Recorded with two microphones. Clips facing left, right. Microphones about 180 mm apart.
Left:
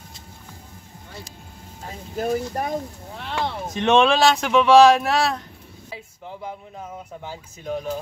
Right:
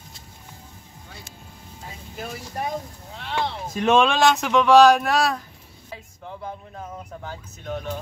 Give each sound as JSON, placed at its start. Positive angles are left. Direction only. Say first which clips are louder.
{"t": 2.1, "sound": "speech", "louder": "left 9 dB", "side_deg": 45}
{"t": 3.2, "sound": "a sound", "louder": "even", "side_deg": 50}
{"t": 3.7, "sound": "speech", "louder": "left 1 dB", "side_deg": -5}
{"t": 6.4, "sound": "speech", "louder": "left 1 dB", "side_deg": 10}